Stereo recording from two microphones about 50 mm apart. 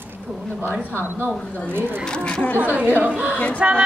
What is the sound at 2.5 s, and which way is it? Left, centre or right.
Speech, right.